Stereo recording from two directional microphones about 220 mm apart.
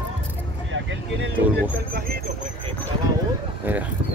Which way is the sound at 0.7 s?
60° right (ahead or behind).